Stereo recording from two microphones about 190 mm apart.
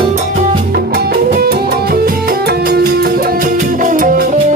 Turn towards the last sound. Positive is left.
turn(degrees=-45)  # may be behind; listen again after turning